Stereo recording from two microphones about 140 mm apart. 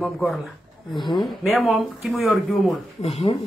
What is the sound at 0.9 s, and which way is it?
Speech, 35° left (ahead or behind).